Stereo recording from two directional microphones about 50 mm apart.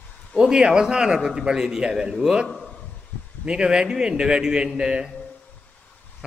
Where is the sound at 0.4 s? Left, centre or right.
Centre.